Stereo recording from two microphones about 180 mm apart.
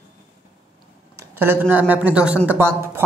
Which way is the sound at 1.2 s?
10° right (ahead or behind).